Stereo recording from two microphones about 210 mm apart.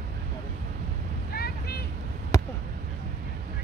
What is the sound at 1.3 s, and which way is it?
Vehicle, 50° left (ahead or behind).